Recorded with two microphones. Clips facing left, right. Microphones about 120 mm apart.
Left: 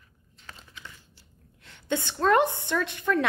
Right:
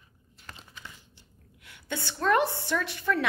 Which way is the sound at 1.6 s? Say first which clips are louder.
Left 6 dB; 20° left (ahead or behind).